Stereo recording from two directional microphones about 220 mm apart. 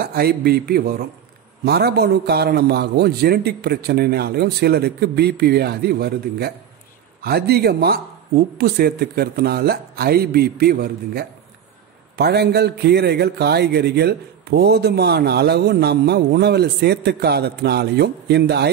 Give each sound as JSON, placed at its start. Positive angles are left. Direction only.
{"t": 0.0, "sound": "speech", "side_deg": -45}